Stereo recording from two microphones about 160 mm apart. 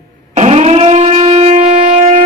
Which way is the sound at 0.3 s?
45° right (ahead or behind).